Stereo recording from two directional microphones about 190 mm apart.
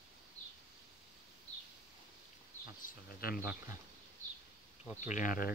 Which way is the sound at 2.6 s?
50° left (ahead or behind).